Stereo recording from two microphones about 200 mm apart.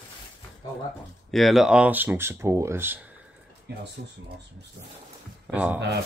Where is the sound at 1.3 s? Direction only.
Centre (ahead or behind).